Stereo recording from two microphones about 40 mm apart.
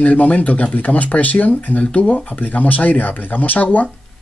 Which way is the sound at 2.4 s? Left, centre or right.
Left.